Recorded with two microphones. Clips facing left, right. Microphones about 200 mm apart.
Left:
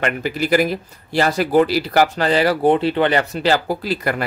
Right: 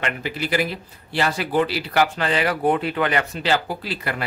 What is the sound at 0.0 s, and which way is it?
Speech, 45° left (ahead or behind).